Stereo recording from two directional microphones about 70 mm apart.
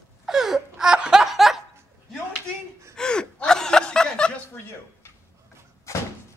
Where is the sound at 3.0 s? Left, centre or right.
Centre.